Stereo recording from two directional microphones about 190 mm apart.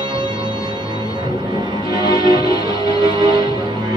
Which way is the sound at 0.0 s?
25° right (ahead or behind).